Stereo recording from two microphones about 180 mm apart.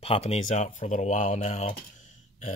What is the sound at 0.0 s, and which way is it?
Speech, 35° left (ahead or behind).